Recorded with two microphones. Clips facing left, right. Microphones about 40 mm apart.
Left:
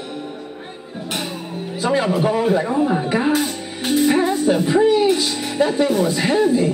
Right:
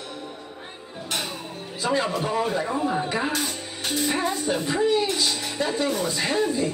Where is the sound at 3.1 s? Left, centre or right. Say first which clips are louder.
Left 8 dB; centre.